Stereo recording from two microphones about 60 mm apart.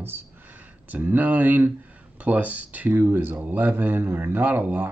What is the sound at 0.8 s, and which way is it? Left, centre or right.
Speech, right.